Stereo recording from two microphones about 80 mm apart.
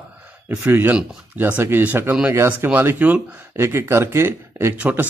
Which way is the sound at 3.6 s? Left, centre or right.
Right.